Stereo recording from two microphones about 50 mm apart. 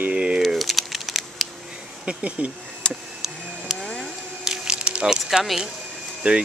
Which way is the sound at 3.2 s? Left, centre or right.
Centre.